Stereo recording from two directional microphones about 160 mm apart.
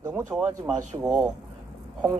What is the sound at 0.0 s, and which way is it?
A man's voice, 15° right (ahead or behind).